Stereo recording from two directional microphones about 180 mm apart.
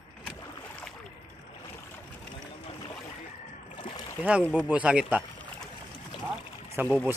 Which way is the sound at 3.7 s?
30° left (ahead or behind).